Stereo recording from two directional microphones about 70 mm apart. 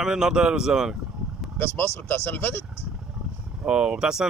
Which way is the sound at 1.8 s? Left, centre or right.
Left.